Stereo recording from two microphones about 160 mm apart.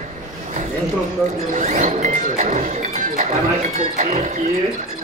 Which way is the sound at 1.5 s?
50° right (ahead or behind).